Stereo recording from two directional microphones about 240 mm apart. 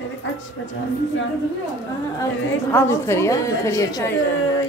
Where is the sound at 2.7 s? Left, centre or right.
Centre.